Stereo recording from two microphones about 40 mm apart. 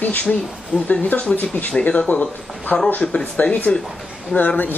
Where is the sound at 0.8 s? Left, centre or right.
Left.